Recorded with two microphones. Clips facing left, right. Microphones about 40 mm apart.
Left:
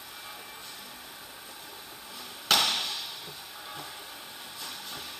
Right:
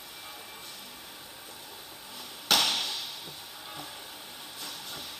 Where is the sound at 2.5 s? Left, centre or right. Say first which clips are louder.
Even; left.